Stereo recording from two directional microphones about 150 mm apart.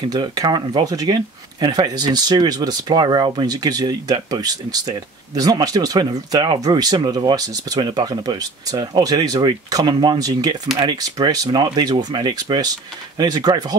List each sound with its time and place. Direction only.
0.1 s speech: 25° right (ahead or behind)